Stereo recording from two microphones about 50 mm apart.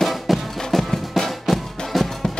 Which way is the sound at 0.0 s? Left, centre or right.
Centre.